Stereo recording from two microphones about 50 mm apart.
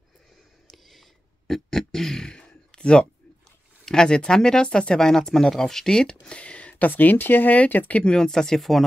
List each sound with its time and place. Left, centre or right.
0.7 s a sound: centre
3.8 s speech: centre; by 8.0 s left
8.0 s speech: centre